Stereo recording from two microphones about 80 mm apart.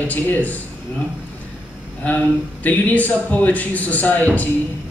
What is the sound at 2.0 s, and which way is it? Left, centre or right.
A man's voice, centre.